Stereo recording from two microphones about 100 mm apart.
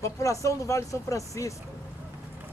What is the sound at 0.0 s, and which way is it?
Speech, 30° left (ahead or behind).